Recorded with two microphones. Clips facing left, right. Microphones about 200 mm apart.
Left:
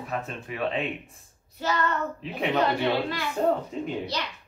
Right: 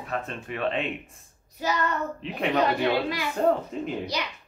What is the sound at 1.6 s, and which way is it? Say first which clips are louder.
Speech: even; 15° right (ahead or behind).